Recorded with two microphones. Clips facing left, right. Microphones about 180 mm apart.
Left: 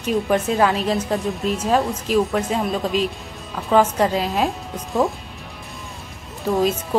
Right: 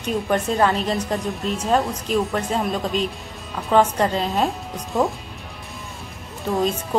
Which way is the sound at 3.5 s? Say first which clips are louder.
Left 1 dB; 5° left (ahead or behind).